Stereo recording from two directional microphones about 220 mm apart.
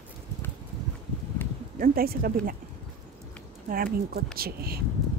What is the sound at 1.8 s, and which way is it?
Speech, 40° right (ahead or behind).